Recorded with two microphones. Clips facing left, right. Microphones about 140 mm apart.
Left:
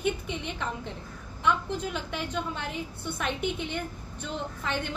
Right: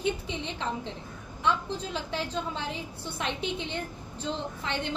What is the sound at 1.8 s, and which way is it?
A woman's voice, 30° right (ahead or behind).